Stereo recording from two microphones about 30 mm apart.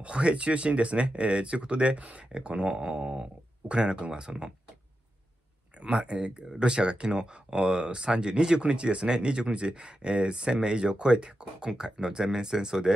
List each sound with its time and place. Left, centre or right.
0.0 s speech: right
2.0 s speech: right
2.3 s speech: right
5.9 s speech: right
11.6 s speech: right